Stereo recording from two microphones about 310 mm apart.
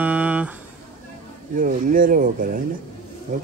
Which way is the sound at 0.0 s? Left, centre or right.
Centre.